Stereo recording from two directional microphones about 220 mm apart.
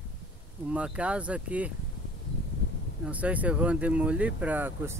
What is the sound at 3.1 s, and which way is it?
Speech, 5° right (ahead or behind).